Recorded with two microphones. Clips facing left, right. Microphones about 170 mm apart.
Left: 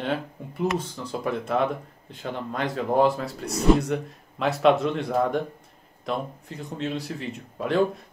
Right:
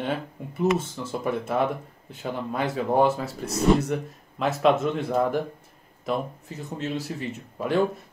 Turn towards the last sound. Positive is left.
turn(degrees=0)  # may be behind; listen again after turning